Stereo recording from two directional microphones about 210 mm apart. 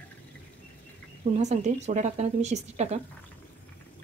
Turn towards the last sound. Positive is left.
turn(degrees=-35)  # may be behind; listen again after turning